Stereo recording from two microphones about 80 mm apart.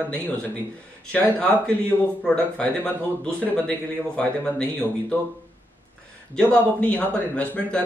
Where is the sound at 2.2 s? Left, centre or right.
Centre.